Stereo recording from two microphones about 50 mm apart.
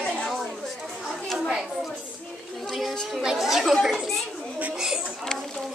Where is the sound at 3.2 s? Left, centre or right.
Centre.